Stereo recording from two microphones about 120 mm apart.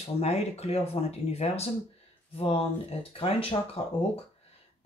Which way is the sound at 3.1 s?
55° left (ahead or behind).